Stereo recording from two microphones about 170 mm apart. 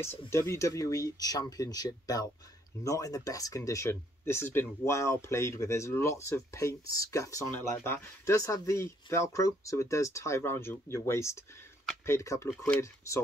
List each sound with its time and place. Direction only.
0.3 s speech: 15° left (ahead or behind)